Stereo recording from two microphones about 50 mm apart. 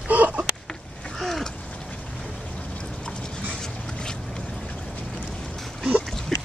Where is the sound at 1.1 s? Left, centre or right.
Centre.